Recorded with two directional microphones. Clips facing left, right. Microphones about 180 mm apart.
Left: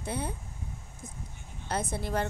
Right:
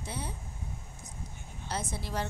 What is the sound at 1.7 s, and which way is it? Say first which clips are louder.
Speech: left 5 dB; 55° left (ahead or behind).